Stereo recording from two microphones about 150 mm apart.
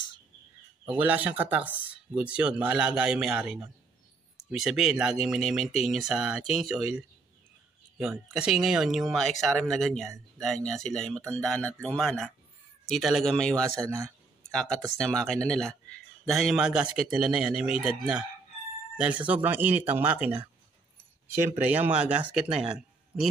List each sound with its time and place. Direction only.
0.8 s speech: 10° right (ahead or behind)
8.4 s speech: 5° right (ahead or behind)
13.7 s speech: 20° right (ahead or behind)
14.5 s speech: 5° left (ahead or behind)
18.9 s speech: 10° right (ahead or behind)